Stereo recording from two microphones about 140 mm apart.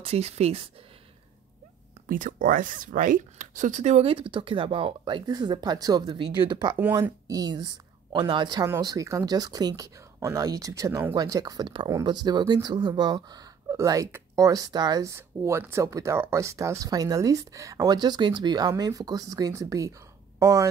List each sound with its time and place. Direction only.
0.0 s speech: 45° right (ahead or behind)
2.0 s speech: 70° right (ahead or behind); by 8.6 s 30° right (ahead or behind)
8.6 s speech: 20° right (ahead or behind)